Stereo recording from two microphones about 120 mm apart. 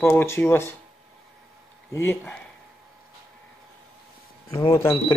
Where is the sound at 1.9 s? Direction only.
20° left (ahead or behind).